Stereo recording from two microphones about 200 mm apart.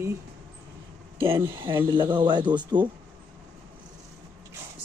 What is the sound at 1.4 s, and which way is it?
Speech, 25° right (ahead or behind).